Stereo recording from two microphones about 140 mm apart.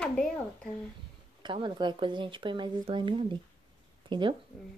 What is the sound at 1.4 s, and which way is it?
Speech, 35° right (ahead or behind).